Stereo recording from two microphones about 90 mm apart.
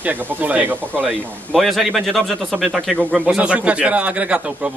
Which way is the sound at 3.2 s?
10° right (ahead or behind).